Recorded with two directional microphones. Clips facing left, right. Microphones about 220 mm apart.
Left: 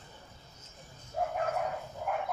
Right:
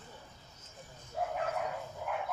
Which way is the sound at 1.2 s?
45° left (ahead or behind).